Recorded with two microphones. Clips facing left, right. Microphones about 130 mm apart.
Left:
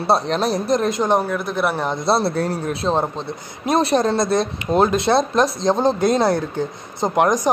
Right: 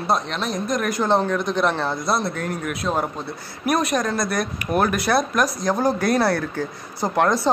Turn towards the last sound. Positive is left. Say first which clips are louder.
# left 2 dB
turn(degrees=15)  # may be behind; listen again after turning